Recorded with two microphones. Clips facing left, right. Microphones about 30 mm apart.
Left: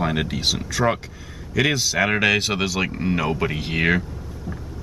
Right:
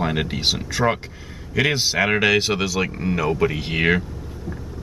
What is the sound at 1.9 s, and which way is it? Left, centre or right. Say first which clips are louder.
Speech: right 1 dB; centre.